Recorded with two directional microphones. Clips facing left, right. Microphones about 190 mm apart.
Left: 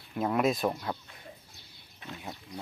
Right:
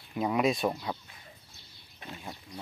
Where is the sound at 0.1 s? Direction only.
Centre (ahead or behind).